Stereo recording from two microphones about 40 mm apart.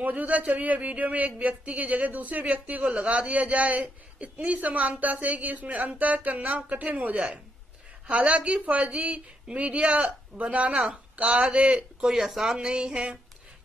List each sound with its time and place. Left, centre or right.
0.0 s a man's voice: right
2.8 s a man's voice: right
10.7 s speech: right
12.1 s speech: centre; by 13.2 s right